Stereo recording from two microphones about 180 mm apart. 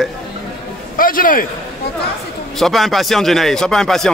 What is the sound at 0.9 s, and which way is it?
Speech, 50° left (ahead or behind).